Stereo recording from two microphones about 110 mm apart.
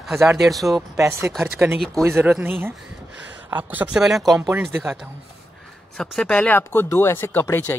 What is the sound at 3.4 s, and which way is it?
Speech, 15° right (ahead or behind).